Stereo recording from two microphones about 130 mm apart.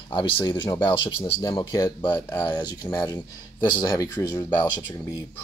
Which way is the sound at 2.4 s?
30° left (ahead or behind).